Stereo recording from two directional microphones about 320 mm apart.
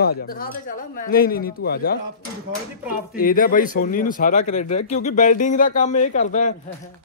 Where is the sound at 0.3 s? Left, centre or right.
Left.